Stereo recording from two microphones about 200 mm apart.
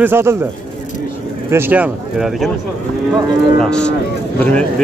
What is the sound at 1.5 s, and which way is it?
A man's voice, 10° right (ahead or behind).